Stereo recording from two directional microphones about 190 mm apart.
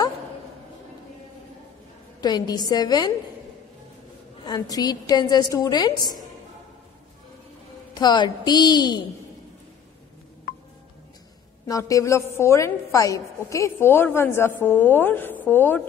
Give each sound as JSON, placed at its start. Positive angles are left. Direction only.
{"t": 2.2, "sound": "a woman's voice", "side_deg": 20}
{"t": 4.5, "sound": "a woman's voice", "side_deg": 20}
{"t": 7.9, "sound": "a woman's voice", "side_deg": 20}
{"t": 11.6, "sound": "a woman's voice", "side_deg": 15}